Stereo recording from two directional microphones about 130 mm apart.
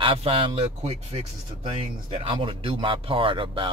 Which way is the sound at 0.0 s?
45° right (ahead or behind).